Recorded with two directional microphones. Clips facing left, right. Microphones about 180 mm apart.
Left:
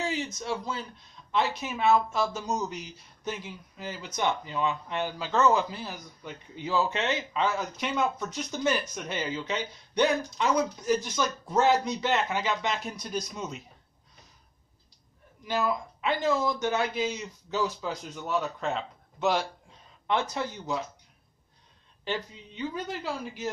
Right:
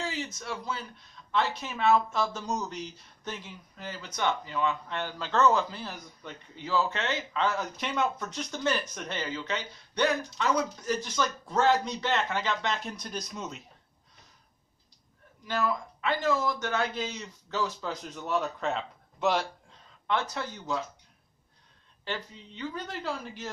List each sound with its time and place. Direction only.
0.0 s speech: 20° left (ahead or behind)
15.4 s speech: 15° left (ahead or behind)
18.1 s speech: centre (ahead or behind)
20.1 s speech: 15° left (ahead or behind)
22.0 s speech: 15° left (ahead or behind)